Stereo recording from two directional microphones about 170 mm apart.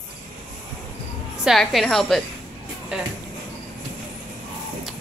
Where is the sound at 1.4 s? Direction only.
Centre (ahead or behind).